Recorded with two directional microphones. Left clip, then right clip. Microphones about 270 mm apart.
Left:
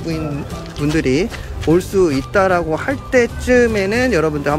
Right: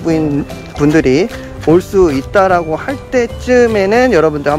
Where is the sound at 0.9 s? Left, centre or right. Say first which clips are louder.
Right 4 dB; centre.